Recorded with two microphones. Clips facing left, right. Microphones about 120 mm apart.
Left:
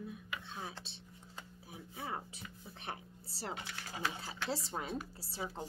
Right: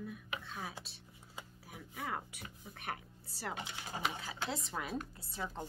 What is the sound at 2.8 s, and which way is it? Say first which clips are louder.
Speech: right 2 dB; 30° left (ahead or behind).